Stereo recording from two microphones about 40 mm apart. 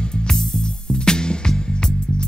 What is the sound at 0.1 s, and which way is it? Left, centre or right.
Music, centre.